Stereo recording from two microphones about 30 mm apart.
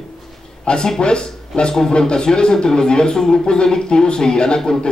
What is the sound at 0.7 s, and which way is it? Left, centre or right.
Speech, left.